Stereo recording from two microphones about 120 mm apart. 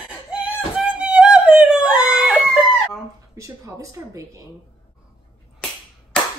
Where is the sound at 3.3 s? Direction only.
25° right (ahead or behind).